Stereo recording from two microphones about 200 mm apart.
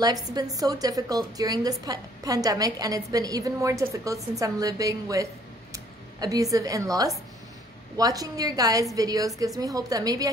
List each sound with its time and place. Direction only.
0.0 s a woman's voice: 20° right (ahead or behind)